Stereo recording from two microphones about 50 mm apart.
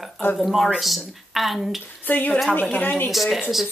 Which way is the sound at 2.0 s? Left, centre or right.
Left.